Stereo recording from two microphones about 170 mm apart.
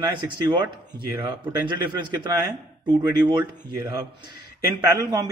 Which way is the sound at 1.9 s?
25° right (ahead or behind).